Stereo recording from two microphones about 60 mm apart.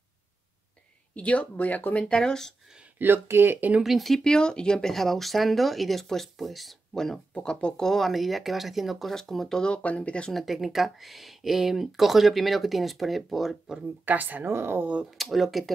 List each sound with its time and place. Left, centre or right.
1.1 s speech: left
2.0 s speech: centre
3.0 s speech: right
3.8 s speech: centre
4.2 s speech: centre
7.3 s speech: centre
10.3 s speech: centre
14.0 s speech: right
14.4 s speech: right
15.0 s speech: centre